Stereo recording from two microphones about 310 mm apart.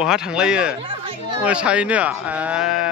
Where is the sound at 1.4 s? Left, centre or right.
Centre.